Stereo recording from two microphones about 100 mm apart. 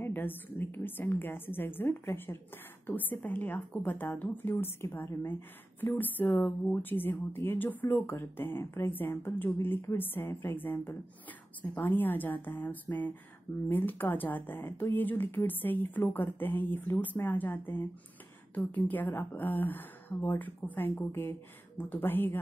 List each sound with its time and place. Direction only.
0.0 s a woman's voice: 20° left (ahead or behind)